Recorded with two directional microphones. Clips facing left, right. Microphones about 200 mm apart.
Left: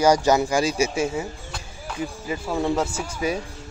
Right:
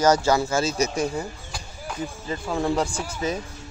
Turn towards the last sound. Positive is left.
turn(degrees=10)  # may be behind; listen again after turning